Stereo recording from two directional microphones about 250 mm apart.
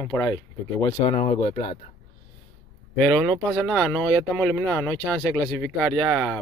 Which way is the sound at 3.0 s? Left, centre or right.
Centre.